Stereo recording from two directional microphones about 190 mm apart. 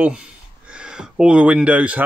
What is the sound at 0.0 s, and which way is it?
Speech, 5° right (ahead or behind).